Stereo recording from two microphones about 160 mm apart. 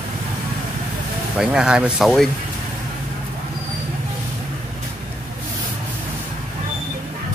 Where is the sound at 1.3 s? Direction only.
5° right (ahead or behind).